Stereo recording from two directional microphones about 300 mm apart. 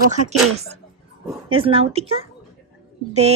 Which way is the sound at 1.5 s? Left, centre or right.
Centre.